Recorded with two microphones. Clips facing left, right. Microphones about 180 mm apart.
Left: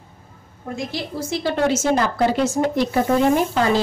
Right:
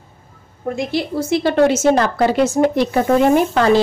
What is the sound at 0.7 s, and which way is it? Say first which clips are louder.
A woman's voice: right 6 dB; 60° right (ahead or behind).